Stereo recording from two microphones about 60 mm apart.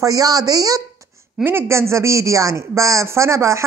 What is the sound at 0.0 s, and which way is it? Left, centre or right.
Speech, right.